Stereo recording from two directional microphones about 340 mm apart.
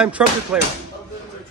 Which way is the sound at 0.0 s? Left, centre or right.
Centre.